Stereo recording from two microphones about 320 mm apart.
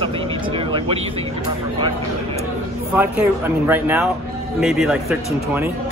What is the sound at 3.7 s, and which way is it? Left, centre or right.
Speech, centre.